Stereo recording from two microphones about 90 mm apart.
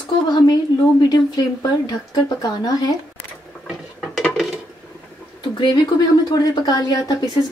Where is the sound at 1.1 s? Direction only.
45° left (ahead or behind).